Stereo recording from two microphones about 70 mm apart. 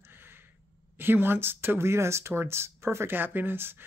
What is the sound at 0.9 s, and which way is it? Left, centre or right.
Speech, right.